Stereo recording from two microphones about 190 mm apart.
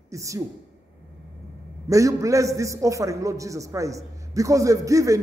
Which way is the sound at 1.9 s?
15° right (ahead or behind).